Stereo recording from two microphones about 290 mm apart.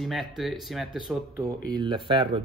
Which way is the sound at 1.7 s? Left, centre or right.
Centre.